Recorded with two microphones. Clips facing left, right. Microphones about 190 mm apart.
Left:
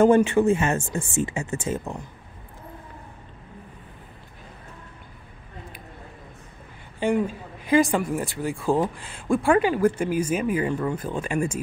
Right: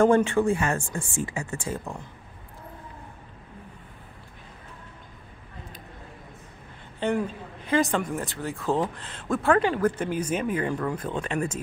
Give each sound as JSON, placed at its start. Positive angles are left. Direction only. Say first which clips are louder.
{"t": 0.0, "sound": "speech", "louder": "left 3 dB", "side_deg": 20}
{"t": 7.0, "sound": "speech", "louder": "left 3 dB", "side_deg": 10}